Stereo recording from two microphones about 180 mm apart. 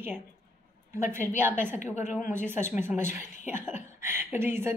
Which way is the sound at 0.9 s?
15° right (ahead or behind).